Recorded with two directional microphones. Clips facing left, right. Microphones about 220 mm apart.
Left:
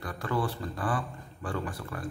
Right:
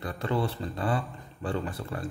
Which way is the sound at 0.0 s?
25° right (ahead or behind).